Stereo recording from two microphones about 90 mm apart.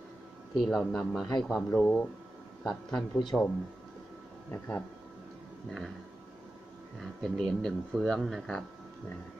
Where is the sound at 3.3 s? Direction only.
Centre (ahead or behind).